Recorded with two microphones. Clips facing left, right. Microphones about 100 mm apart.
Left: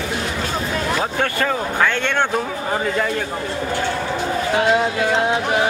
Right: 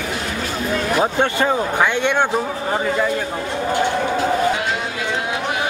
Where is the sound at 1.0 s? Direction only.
20° right (ahead or behind).